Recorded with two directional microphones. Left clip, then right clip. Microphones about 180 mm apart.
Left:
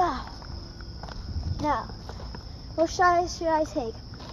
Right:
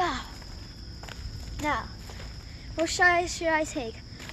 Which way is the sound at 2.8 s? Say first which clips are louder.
Left 1 dB; 5° right (ahead or behind).